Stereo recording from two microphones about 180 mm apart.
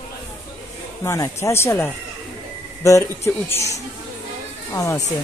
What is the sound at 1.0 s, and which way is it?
Speech, 15° left (ahead or behind).